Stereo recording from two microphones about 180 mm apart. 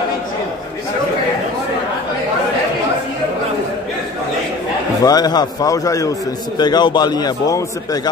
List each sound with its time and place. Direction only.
5.0 s a man's voice: 20° left (ahead or behind)